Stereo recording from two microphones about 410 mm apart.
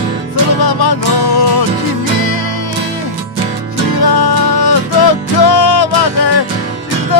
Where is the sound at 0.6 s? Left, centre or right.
Left.